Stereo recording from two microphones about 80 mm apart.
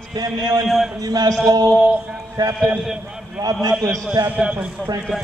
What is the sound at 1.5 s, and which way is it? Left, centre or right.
A man's voice, right.